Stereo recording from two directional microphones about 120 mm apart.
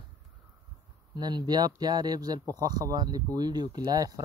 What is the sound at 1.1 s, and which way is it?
Speech, 35° right (ahead or behind).